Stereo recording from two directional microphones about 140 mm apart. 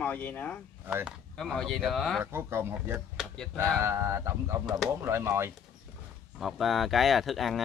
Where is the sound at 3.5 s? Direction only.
20° right (ahead or behind).